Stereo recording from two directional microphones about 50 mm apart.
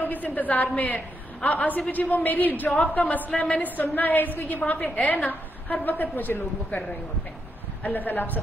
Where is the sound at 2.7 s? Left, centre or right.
Left.